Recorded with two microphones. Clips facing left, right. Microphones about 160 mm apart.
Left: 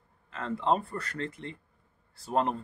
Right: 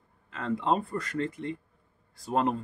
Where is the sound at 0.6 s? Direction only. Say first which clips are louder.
Left 1 dB; 15° right (ahead or behind).